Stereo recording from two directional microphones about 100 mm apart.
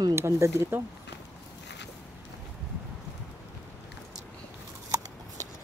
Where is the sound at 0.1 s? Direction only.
25° right (ahead or behind).